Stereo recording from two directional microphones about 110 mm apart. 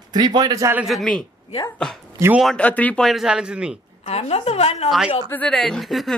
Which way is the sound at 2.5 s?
15° left (ahead or behind).